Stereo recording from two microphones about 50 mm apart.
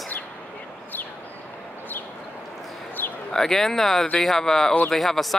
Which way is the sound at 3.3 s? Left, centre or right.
Centre.